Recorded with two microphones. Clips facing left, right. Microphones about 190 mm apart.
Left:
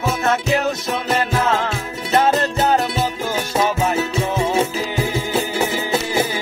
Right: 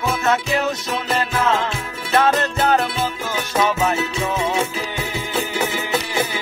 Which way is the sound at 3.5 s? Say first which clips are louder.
Even; 25° left (ahead or behind).